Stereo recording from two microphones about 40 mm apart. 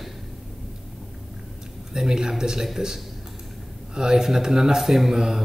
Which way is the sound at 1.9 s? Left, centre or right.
Centre.